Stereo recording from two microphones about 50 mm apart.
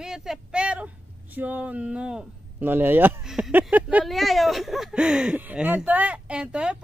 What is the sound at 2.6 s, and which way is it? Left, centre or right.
Speech, right.